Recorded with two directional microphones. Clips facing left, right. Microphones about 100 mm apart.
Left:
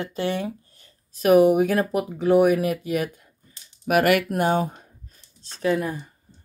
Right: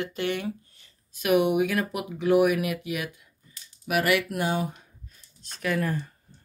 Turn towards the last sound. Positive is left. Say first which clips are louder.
# left 5 dB
turn(degrees=25)  # may be behind; listen again after turning